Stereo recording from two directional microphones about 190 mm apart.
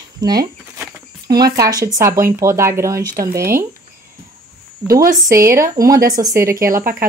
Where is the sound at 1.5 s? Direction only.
20° right (ahead or behind).